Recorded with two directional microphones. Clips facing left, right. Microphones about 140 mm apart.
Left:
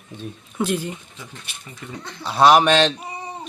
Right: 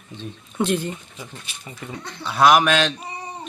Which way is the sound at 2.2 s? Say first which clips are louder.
Left 2 dB; 30° left (ahead or behind).